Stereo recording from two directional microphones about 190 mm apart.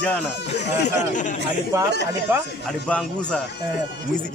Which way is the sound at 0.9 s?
40° left (ahead or behind).